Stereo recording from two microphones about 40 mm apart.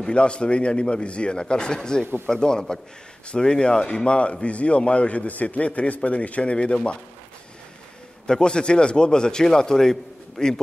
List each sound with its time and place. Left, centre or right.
0.1 s a man's voice: left
8.3 s speech: left